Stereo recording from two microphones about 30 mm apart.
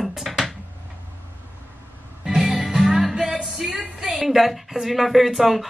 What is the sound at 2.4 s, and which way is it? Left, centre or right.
Music, centre.